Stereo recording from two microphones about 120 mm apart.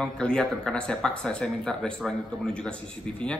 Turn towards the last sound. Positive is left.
turn(degrees=10)  # may be behind; listen again after turning